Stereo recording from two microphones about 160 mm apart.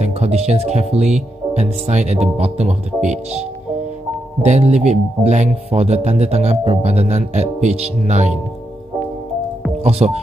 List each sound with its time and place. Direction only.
0.0 s speech: 40° right (ahead or behind)
9.8 s speech: 40° right (ahead or behind)